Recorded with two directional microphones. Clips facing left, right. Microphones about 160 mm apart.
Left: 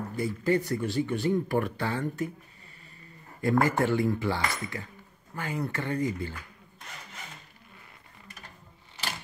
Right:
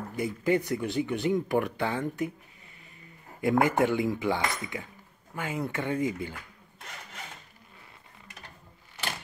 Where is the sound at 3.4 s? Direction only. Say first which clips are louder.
Right 1 dB; 20° right (ahead or behind).